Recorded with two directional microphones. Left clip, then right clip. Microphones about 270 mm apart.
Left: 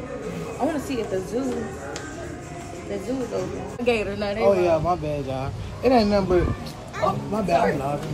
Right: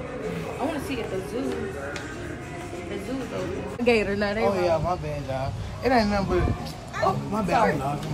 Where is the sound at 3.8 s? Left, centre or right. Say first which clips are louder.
Right 1 dB; right.